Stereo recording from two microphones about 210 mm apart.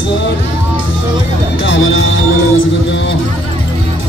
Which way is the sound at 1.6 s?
65° left (ahead or behind).